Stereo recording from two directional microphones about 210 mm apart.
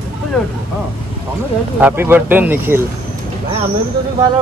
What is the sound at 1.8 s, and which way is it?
Speech, 10° right (ahead or behind).